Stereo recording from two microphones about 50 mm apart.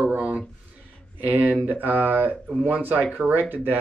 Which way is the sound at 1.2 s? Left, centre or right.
Right.